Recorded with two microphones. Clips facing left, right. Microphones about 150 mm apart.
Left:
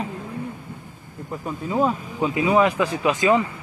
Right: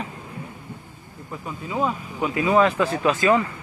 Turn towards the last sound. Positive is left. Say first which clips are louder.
# even
turn(degrees=20)  # may be behind; listen again after turning